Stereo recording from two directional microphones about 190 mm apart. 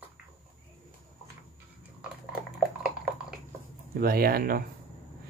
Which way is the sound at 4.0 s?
50° right (ahead or behind).